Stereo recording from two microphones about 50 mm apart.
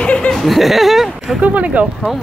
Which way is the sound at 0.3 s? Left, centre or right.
Centre.